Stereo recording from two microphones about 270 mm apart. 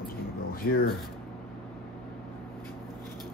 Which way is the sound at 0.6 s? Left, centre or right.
Left.